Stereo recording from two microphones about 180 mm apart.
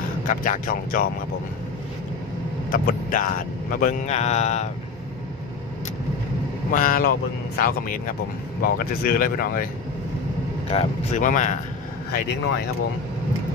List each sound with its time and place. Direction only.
0.3 s speech: 50° left (ahead or behind)
2.7 s speech: 50° left (ahead or behind)
6.7 s speech: 50° left (ahead or behind)
10.7 s speech: 35° left (ahead or behind)